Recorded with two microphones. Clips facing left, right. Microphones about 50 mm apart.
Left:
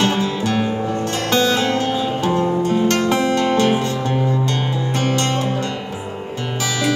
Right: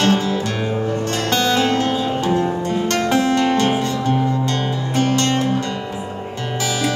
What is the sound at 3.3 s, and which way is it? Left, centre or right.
Music, centre.